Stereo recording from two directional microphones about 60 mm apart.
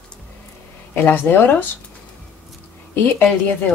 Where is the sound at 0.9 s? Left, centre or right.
Left.